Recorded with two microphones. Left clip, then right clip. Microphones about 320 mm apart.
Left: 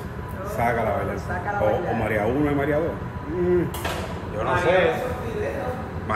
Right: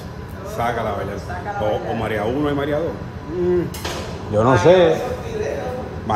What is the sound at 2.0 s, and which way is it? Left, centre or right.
Speech, centre.